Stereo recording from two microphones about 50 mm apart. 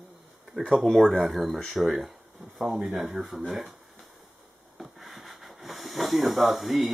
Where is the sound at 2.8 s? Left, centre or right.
Centre.